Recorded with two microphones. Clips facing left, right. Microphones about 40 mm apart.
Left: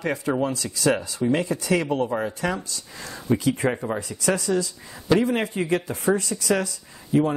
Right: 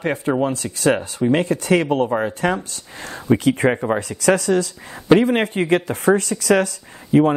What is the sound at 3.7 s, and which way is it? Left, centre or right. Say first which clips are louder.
Speech: right 7 dB; right.